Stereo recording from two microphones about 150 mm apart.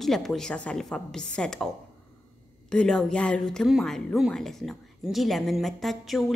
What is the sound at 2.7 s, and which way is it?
A woman's voice, 5° left (ahead or behind).